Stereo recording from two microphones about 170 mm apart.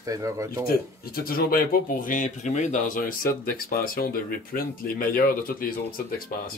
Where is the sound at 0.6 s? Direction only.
60° left (ahead or behind).